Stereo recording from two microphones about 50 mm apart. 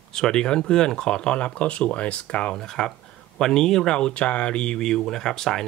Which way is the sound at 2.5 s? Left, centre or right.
Centre.